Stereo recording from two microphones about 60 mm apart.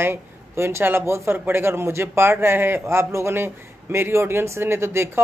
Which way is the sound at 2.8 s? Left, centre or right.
Right.